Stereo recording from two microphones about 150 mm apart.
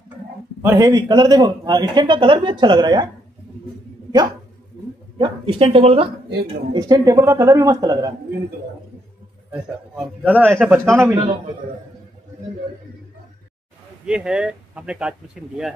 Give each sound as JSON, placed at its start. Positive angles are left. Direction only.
{"t": 0.6, "sound": "speech", "side_deg": -20}
{"t": 5.2, "sound": "speech", "side_deg": -35}
{"t": 7.1, "sound": "speech", "side_deg": -20}
{"t": 9.5, "sound": "a man's voice", "side_deg": -10}
{"t": 14.0, "sound": "a man's voice", "side_deg": -5}